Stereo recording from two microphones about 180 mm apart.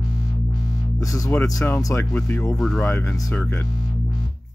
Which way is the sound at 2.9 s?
15° left (ahead or behind).